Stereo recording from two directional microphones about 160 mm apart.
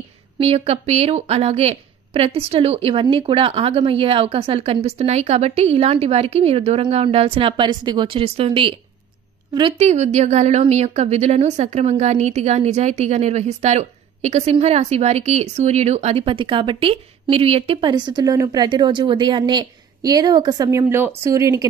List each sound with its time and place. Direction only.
0.4 s a woman's voice: 40° right (ahead or behind)
9.8 s a woman's voice: 45° right (ahead or behind); by 21.6 s 20° right (ahead or behind)